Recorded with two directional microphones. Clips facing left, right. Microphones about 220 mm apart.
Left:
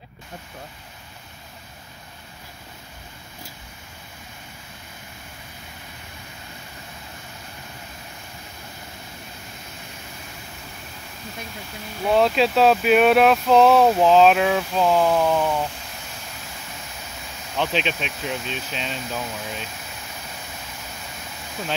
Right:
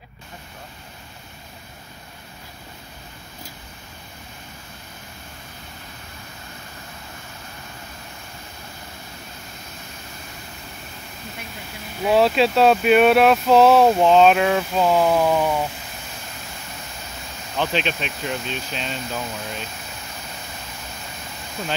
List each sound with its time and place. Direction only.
12.0 s speech: 5° right (ahead or behind)
17.6 s speech: centre (ahead or behind)